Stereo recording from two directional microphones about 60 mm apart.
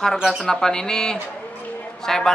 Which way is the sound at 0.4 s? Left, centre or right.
Centre.